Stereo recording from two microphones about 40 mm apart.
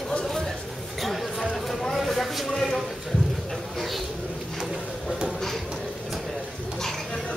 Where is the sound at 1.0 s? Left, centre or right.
Centre.